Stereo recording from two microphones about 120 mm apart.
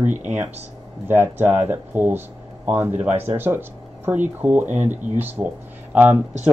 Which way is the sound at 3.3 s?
20° right (ahead or behind).